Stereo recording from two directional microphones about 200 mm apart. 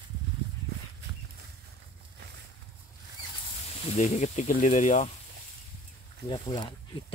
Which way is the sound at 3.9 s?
35° left (ahead or behind).